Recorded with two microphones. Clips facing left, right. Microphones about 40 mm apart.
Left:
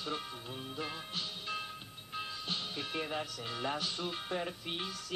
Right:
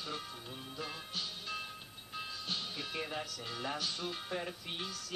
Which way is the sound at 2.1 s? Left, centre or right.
Centre.